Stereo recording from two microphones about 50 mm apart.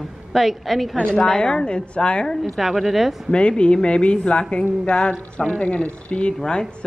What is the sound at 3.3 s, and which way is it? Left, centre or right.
A man's voice, left.